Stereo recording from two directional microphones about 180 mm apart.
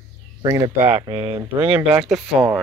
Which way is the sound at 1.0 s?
30° right (ahead or behind).